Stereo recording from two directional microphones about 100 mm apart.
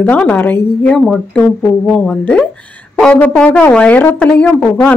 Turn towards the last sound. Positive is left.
turn(degrees=10)  # may be behind; listen again after turning